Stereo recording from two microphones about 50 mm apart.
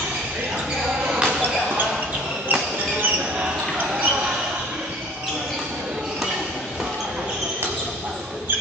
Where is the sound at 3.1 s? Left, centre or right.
Right.